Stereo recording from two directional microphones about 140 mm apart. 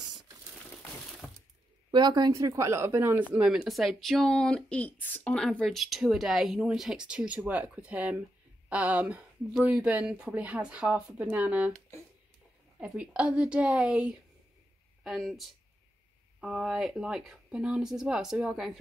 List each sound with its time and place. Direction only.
1.2 s breaking: 10° left (ahead or behind)
1.9 s speech: 30° right (ahead or behind)
3.3 s speech: 5° right (ahead or behind)
12.8 s speech: 5° right (ahead or behind)